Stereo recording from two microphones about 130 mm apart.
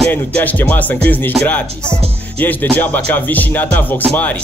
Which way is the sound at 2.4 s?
15° left (ahead or behind).